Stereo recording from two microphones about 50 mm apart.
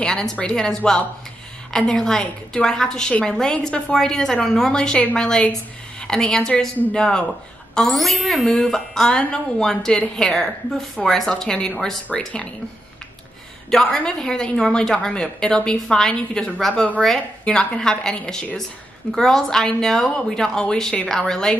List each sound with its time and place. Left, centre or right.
0.0 s a woman's voice: centre
7.9 s a woman's voice: centre
13.7 s a woman's voice: centre